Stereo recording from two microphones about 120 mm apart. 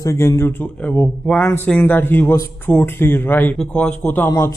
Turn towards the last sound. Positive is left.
turn(degrees=20)  # may be behind; listen again after turning